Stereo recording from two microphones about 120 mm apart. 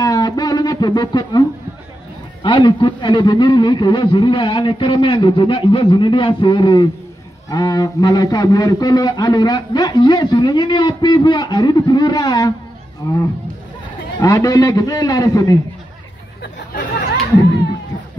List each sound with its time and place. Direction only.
0.0 s a sound: 30° left (ahead or behind)
2.4 s a man's voice: 40° left (ahead or behind)
14.2 s a man's voice: 30° left (ahead or behind)